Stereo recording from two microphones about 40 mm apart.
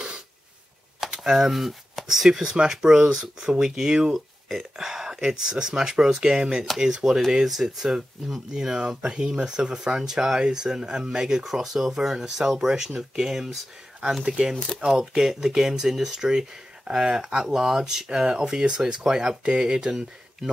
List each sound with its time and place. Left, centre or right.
1.1 s a sound: centre
2.0 s speech: centre
4.1 s a sound: centre
4.7 s speech: centre
7.1 s speech: centre
14.2 s speech: right